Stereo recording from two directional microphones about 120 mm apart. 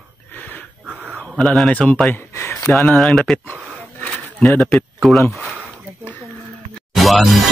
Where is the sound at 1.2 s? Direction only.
5° left (ahead or behind).